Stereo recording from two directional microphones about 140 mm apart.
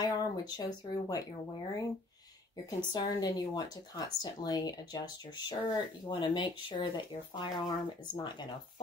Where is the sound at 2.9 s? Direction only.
30° left (ahead or behind).